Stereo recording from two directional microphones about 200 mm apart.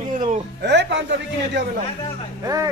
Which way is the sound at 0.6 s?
60° right (ahead or behind).